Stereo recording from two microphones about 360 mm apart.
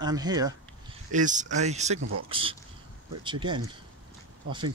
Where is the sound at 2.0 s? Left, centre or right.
Right.